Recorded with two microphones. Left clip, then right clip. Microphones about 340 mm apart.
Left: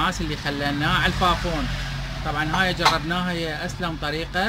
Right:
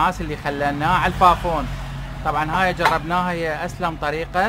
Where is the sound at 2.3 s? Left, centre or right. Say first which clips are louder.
Right 3 dB; centre.